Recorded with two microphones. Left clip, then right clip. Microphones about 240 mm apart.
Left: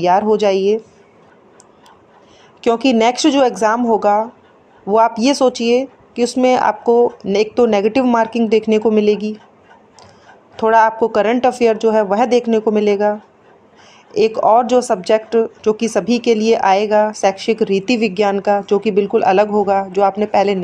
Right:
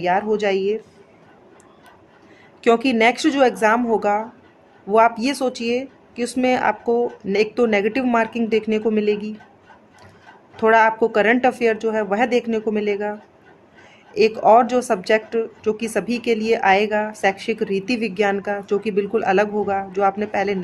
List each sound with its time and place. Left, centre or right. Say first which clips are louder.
0.0 s speech: left 6 dB; centre
2.6 s speech: left 2 dB; centre
10.5 s speech: left 3 dB; centre
14.1 s speech: left 2 dB; centre